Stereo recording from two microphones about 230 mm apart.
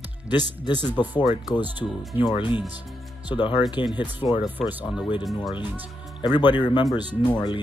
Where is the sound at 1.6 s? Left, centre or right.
Centre.